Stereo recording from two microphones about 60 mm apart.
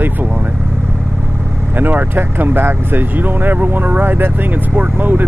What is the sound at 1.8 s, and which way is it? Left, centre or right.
Speech, right.